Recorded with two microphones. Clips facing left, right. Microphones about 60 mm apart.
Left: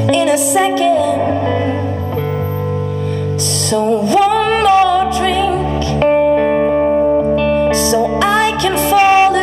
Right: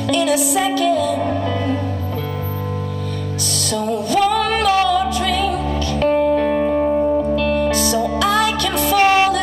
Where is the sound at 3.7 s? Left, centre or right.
Left.